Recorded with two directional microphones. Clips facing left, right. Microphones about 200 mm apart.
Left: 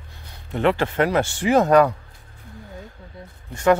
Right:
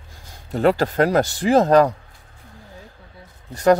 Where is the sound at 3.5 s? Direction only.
35° right (ahead or behind).